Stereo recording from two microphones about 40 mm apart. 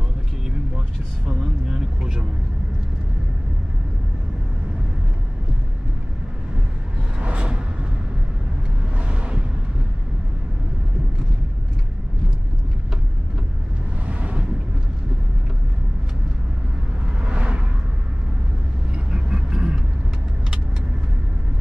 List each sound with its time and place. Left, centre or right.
1.7 s vehicle: centre
7.2 s a sound: right
8.9 s vehicle: right
14.0 s vehicle: right
17.2 s a sound: right
19.0 s vehicle: right